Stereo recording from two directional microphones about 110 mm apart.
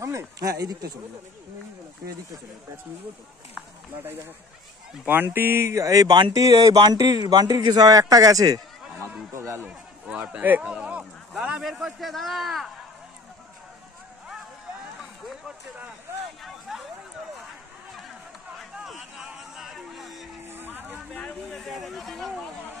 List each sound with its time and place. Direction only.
0.0 s speech: 25° right (ahead or behind)
5.0 s speech: 20° right (ahead or behind); by 9.1 s 35° right (ahead or behind)
9.3 s speech: 25° right (ahead or behind); by 12.7 s centre (ahead or behind)
15.0 s a sound: 5° right (ahead or behind)
16.4 s speech: centre (ahead or behind)
18.6 s music: 5° right (ahead or behind)
20.4 s a sound: 20° right (ahead or behind)
21.1 s speech: 10° left (ahead or behind)